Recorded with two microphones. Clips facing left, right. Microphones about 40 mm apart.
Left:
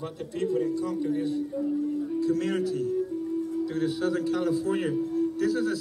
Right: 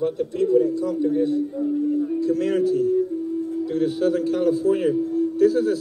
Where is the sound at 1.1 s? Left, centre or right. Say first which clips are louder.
Right 7 dB; right.